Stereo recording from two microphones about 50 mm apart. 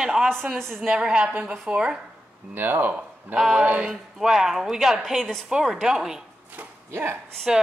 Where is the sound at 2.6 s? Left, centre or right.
Right.